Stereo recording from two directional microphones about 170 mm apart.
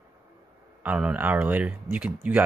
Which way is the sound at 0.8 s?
10° right (ahead or behind).